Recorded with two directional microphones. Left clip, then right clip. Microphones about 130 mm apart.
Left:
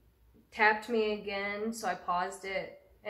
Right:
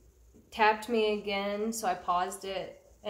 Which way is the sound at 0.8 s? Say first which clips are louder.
Right 3 dB; 20° right (ahead or behind).